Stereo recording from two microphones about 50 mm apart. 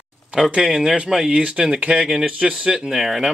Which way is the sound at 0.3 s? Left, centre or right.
Right.